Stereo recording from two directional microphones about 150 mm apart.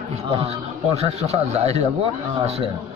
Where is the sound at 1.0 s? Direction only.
45° right (ahead or behind).